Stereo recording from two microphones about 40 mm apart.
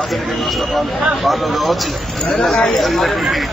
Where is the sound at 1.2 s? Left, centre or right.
Centre.